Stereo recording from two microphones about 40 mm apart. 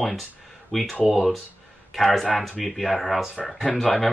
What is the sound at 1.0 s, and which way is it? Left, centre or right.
Speech, centre.